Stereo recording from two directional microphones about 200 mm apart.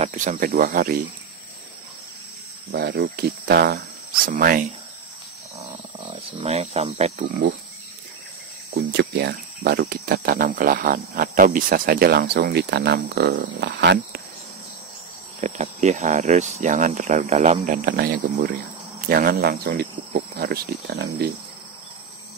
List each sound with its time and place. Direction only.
0.0 s speech: 40° right (ahead or behind)
2.7 s speech: 55° right (ahead or behind)
4.3 s speech: 45° right (ahead or behind)
5.6 s wild animals: 30° right (ahead or behind)
8.7 s speech: 55° right (ahead or behind)
15.4 s speech: 35° right (ahead or behind); by 21.3 s 55° right (ahead or behind)